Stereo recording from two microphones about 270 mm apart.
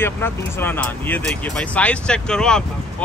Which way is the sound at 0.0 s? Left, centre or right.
Centre.